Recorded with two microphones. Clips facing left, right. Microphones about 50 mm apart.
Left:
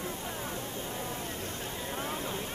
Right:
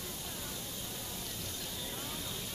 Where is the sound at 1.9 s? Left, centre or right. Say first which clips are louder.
Left 8 dB; left.